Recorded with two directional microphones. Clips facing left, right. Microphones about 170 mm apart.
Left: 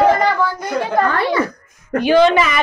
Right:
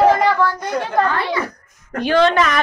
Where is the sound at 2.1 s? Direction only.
5° left (ahead or behind).